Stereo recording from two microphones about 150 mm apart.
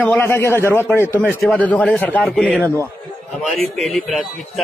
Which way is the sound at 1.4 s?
5° left (ahead or behind).